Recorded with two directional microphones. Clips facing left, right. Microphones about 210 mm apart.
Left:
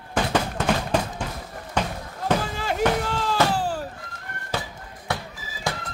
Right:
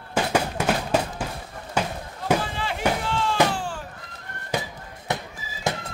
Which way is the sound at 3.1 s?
40° left (ahead or behind).